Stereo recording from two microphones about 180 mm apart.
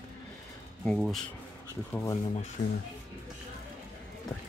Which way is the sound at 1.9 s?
20° left (ahead or behind).